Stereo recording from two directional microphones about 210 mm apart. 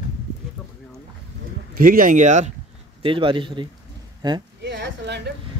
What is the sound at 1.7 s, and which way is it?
Speech, 40° right (ahead or behind).